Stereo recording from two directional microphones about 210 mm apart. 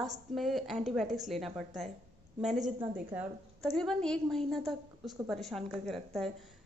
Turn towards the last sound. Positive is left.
turn(degrees=0)  # may be behind; listen again after turning